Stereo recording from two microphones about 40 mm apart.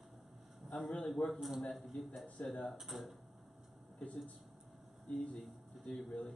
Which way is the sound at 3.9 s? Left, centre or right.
Left.